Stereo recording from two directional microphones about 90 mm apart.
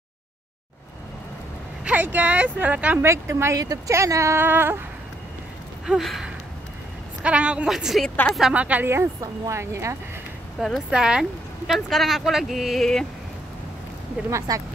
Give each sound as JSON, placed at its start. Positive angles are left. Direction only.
{"t": 1.9, "sound": "speech", "side_deg": -20}
{"t": 3.1, "sound": "speech", "side_deg": -30}
{"t": 5.9, "sound": "a sound", "side_deg": 0}
{"t": 7.2, "sound": "speech", "side_deg": -15}
{"t": 7.7, "sound": "speech", "side_deg": 0}
{"t": 8.8, "sound": "speech", "side_deg": -25}
{"t": 10.9, "sound": "speech", "side_deg": -10}
{"t": 14.5, "sound": "speech", "side_deg": -45}